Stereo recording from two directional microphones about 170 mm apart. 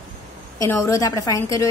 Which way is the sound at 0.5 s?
15° left (ahead or behind).